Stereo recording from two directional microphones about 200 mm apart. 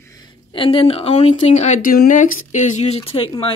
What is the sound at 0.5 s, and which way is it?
Speech, 25° left (ahead or behind).